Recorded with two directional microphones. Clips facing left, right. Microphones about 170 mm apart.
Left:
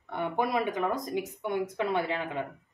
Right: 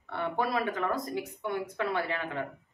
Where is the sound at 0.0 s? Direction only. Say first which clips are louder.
Left 1 dB; 15° left (ahead or behind).